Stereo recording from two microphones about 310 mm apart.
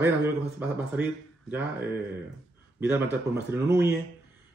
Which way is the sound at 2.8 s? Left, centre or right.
Centre.